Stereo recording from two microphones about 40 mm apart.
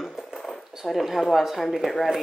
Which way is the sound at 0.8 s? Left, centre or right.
Centre.